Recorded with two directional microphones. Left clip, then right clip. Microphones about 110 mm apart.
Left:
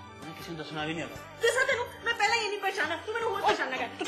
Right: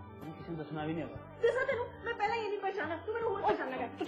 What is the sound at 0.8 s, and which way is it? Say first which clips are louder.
A woman's voice: left 5 dB; 15° left (ahead or behind).